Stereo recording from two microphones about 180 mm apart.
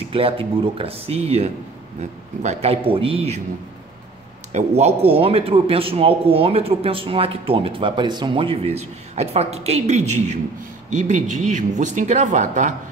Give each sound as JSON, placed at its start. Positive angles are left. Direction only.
{"t": 0.1, "sound": "a man's voice", "side_deg": -30}
{"t": 4.5, "sound": "a man's voice", "side_deg": -40}